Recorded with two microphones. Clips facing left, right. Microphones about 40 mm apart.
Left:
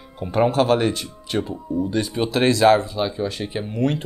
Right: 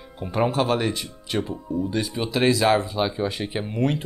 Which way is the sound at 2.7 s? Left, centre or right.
Centre.